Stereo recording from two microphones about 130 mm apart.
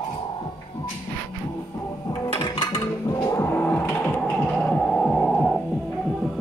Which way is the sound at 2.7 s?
25° left (ahead or behind).